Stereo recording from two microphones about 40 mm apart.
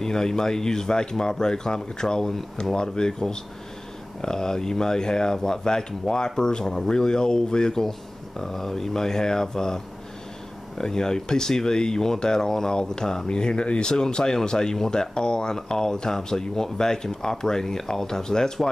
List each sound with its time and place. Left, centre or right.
0.0 s speech: centre
8.4 s speech: centre
10.8 s speech: centre